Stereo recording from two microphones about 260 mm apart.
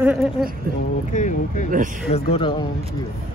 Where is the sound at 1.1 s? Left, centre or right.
Left.